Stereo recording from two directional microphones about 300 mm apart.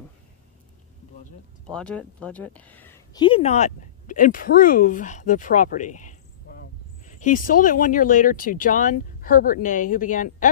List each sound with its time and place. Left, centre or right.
1.7 s speech: centre; by 10.5 s left